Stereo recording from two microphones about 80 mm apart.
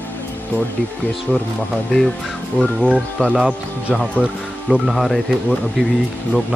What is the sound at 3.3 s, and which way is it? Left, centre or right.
Speech, centre.